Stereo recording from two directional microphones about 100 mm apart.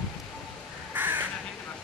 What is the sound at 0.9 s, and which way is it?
Crow, 20° right (ahead or behind).